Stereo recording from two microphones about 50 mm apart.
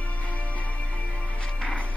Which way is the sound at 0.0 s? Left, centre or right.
Left.